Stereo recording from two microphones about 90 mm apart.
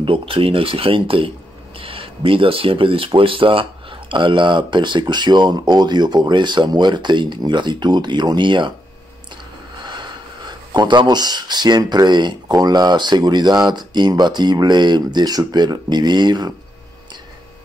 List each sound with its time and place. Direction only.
0.0 s speech: 85° right; by 8.7 s 60° right (ahead or behind)
10.7 s speech: 60° right (ahead or behind)